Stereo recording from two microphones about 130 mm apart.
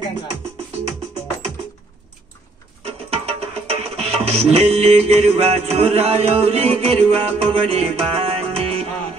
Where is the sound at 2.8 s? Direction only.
50° right (ahead or behind).